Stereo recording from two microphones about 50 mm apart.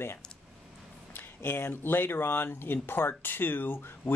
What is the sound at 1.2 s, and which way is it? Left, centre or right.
Speech, left.